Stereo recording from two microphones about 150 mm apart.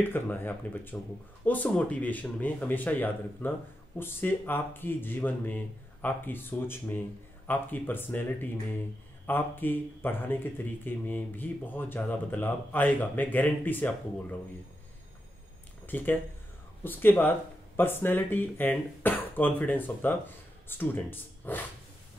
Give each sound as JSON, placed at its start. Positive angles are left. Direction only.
{"t": 0.1, "sound": "speech", "side_deg": 15}
{"t": 16.8, "sound": "speech", "side_deg": 15}